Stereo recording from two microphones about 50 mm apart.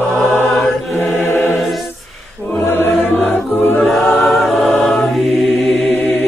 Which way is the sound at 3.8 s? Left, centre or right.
Centre.